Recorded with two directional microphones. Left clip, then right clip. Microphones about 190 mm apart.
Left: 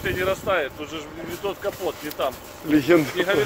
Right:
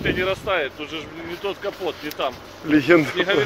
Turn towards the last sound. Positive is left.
turn(degrees=10)  # may be behind; listen again after turning